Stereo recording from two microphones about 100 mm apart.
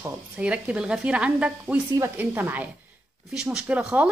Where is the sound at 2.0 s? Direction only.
20° right (ahead or behind).